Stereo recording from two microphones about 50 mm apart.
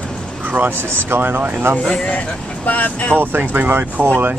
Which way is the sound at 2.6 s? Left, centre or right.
Left.